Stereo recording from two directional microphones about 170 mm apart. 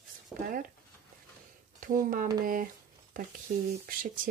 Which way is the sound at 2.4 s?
55° right (ahead or behind).